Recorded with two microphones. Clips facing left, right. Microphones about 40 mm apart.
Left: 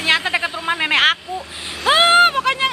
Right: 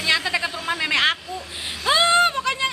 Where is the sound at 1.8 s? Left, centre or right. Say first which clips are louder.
Left 5 dB; left.